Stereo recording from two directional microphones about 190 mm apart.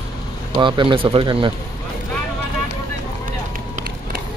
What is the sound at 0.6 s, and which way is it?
Speech, 25° right (ahead or behind).